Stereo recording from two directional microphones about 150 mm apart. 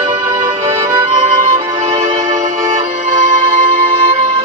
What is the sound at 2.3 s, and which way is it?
Music, 60° right (ahead or behind).